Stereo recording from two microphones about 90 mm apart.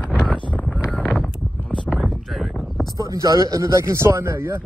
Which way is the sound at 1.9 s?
Centre (ahead or behind).